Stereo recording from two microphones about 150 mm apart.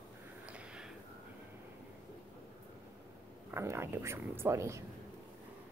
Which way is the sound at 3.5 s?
15° right (ahead or behind).